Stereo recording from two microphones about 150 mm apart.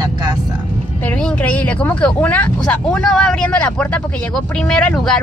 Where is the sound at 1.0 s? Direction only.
10° left (ahead or behind).